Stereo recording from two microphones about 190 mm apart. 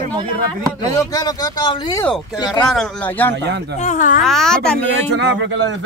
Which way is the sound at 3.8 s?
40° left (ahead or behind).